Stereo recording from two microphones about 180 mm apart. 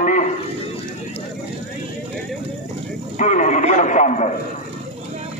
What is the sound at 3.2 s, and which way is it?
A man's voice, 45° left (ahead or behind).